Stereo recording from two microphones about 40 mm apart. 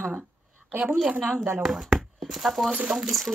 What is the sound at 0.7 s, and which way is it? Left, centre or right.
Speech, right.